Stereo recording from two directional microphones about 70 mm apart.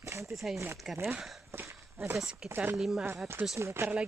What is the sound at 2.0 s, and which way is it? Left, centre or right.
Speech, right.